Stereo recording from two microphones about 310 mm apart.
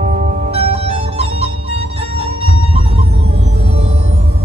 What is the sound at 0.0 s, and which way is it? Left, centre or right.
Music, right.